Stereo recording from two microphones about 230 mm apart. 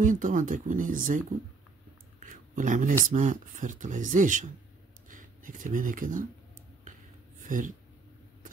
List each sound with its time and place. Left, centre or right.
0.0 s speech: right
2.1 s a sound: right
3.1 s speech: right
7.4 s speech: right